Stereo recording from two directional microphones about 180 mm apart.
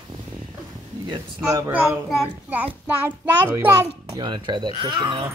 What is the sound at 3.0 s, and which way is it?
A child's voice, 10° right (ahead or behind).